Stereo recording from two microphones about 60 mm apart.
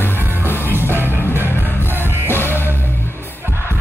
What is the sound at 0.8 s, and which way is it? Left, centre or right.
Music, right.